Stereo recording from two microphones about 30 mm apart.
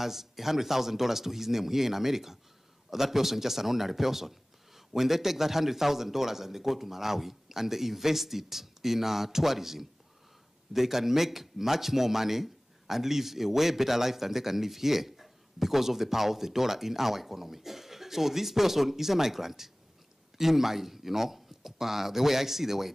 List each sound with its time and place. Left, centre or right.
0.0 s speech: centre